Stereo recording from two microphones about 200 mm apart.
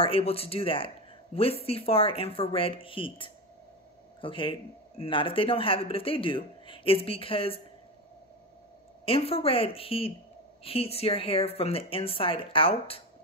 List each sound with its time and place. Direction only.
0.0 s speech: 30° left (ahead or behind)
9.0 s speech: 30° left (ahead or behind)